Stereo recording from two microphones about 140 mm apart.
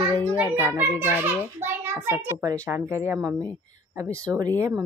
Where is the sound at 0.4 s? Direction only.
15° right (ahead or behind).